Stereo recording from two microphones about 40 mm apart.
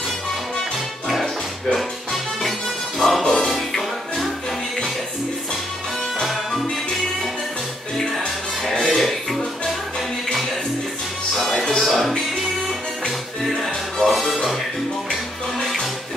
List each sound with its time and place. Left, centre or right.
3.0 s music: centre
6.2 s music: centre
8.7 s music: centre
11.3 s music: centre
13.9 s music: centre
15.6 s music: centre